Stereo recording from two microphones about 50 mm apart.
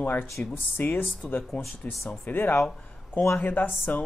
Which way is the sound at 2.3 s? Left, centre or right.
Left.